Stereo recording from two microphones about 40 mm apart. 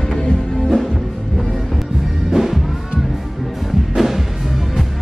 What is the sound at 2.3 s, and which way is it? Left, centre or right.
Music, centre.